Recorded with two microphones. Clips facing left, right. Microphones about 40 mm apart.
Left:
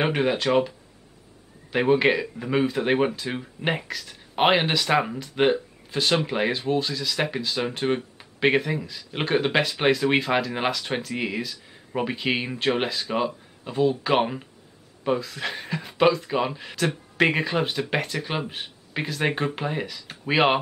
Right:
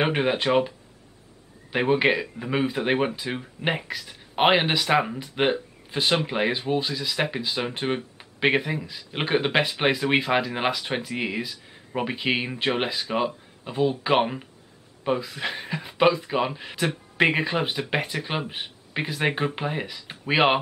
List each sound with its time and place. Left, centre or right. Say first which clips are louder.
0.0 s speech: even; centre